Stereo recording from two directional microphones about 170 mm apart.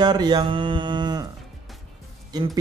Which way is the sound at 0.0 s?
25° right (ahead or behind).